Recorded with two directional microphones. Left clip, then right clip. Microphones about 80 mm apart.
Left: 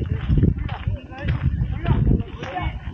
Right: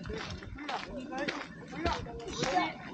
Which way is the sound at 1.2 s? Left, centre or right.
Right.